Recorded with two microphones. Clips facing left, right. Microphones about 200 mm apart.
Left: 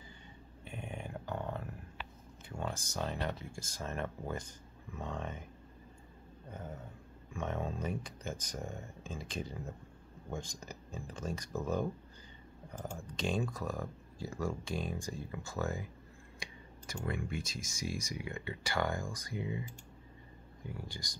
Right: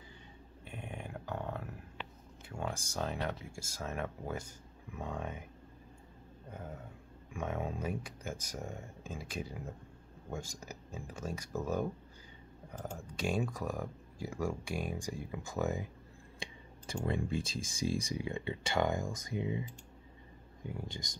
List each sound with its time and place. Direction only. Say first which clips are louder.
0.7 s a sound: left 1 dB; 5° right (ahead or behind)
2.5 s speech: right 1 dB; 10° right (ahead or behind)
7.3 s speech: even; 10° right (ahead or behind)
12.9 s speech: right 1 dB; 10° right (ahead or behind)